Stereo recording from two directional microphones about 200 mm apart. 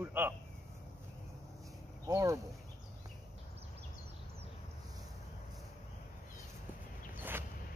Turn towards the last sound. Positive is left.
turn(degrees=-10)  # may be behind; listen again after turning